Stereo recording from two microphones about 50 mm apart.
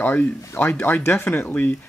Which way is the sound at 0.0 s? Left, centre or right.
Left.